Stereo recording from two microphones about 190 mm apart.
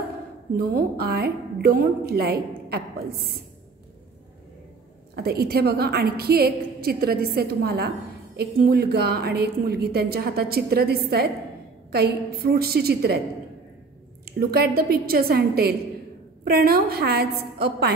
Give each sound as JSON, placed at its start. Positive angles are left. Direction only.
{"t": 0.6, "sound": "a woman's voice", "side_deg": -55}
{"t": 5.1, "sound": "a woman's voice", "side_deg": -55}
{"t": 14.2, "sound": "a woman's voice", "side_deg": -55}